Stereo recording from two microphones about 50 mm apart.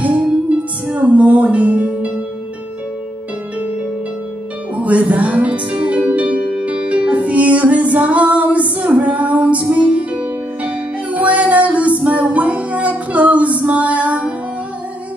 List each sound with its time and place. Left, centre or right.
0.9 s music: right
4.7 s music: right